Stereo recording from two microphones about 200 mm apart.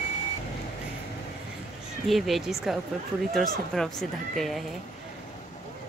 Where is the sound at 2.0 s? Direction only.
Centre (ahead or behind).